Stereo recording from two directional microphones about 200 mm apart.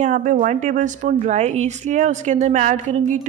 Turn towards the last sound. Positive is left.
turn(degrees=-35)  # may be behind; listen again after turning